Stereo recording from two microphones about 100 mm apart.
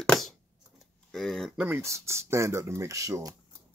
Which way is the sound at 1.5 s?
15° right (ahead or behind).